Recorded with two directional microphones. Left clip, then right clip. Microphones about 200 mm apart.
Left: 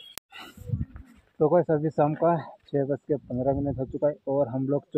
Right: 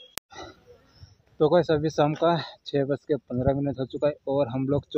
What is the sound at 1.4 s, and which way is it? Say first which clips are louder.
Speech: right 1 dB; 15° right (ahead or behind).